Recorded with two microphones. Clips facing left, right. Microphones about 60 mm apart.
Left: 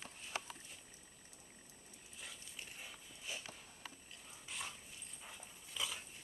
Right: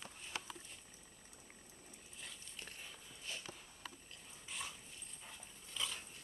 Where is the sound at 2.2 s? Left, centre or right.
Centre.